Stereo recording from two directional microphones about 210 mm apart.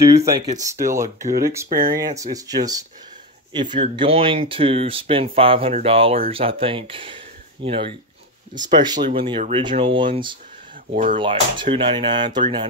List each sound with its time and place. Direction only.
0.1 s speech: 15° right (ahead or behind)
10.9 s speech: 40° right (ahead or behind)
11.1 s speech: 25° right (ahead or behind)